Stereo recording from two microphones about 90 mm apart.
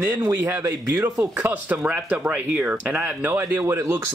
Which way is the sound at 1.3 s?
25° right (ahead or behind).